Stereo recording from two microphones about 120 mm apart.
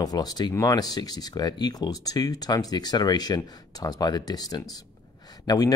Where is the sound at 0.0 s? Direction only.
35° left (ahead or behind).